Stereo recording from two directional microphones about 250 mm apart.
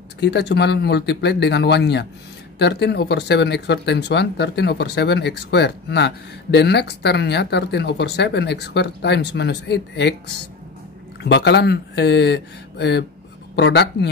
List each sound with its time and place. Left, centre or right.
0.2 s speech: left